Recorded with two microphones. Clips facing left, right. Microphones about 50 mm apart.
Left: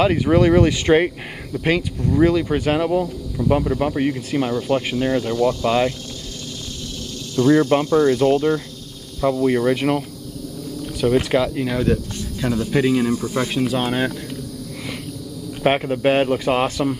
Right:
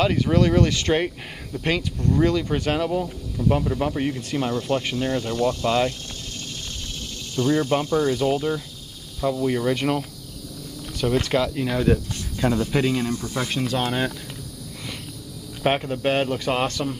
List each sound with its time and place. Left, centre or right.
0.0 s speech: centre
7.4 s speech: left
8.2 s speech: centre
9.2 s speech: left
9.6 s speech: centre
13.1 s speech: left
13.5 s speech: centre
15.6 s speech: centre